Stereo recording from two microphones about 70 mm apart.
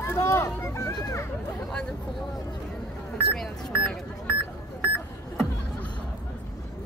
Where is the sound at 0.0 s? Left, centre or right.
Left.